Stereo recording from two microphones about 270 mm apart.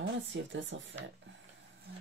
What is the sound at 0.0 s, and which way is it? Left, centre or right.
Speech, right.